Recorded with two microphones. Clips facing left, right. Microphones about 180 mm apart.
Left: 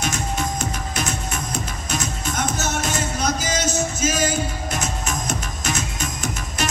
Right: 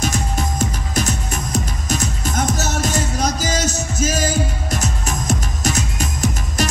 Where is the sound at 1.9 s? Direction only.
40° right (ahead or behind).